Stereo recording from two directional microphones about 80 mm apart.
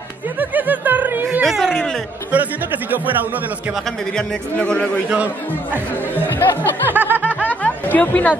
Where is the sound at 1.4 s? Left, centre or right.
Centre.